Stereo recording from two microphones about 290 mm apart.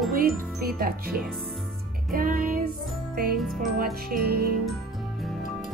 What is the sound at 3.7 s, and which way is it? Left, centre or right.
Speech, right.